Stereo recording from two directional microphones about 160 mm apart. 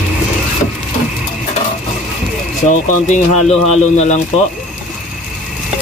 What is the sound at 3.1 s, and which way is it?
Speech, 45° left (ahead or behind).